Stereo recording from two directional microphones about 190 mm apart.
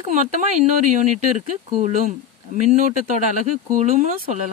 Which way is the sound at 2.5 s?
45° right (ahead or behind).